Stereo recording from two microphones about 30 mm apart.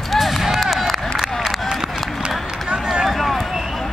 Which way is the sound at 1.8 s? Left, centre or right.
Right.